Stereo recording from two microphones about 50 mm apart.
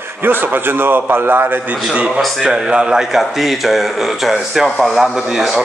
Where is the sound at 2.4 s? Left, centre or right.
Centre.